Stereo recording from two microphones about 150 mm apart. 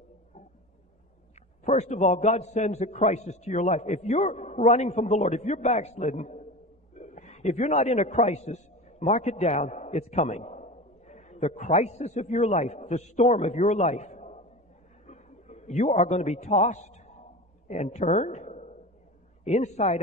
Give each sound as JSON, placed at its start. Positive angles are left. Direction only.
{"t": 1.6, "sound": "a man's voice", "side_deg": 50}